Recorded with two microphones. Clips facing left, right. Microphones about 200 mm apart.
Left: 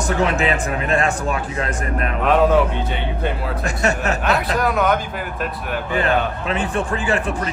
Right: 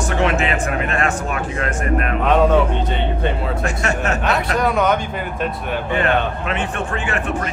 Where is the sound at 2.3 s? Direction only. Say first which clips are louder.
Even; centre (ahead or behind).